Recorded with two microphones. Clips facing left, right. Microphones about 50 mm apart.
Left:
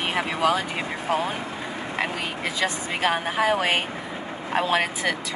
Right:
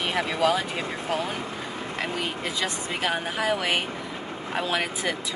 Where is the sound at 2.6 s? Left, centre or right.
Left.